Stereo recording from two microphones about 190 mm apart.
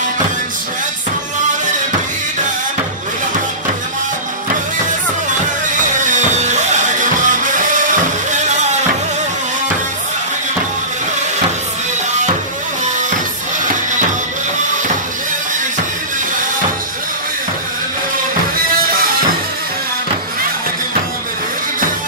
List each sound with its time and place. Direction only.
6.0 s music: 40° right (ahead or behind)